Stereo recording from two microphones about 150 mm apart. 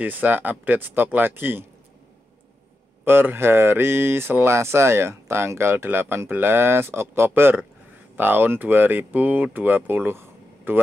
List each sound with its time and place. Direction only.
0.0 s speech: 10° right (ahead or behind)
3.1 s speech: 15° right (ahead or behind)